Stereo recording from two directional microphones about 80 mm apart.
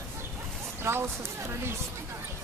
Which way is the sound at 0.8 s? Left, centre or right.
Right.